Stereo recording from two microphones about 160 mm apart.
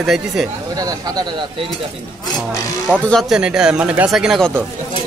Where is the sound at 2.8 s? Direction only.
5° left (ahead or behind).